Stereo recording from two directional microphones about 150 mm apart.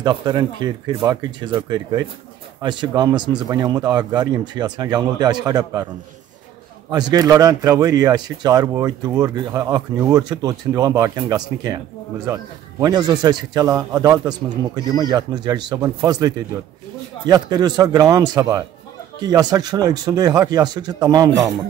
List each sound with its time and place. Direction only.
0.0 s speech: 30° right (ahead or behind)
6.9 s speech: 25° right (ahead or behind)